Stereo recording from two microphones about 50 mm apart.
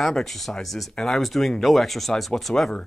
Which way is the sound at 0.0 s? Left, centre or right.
Centre.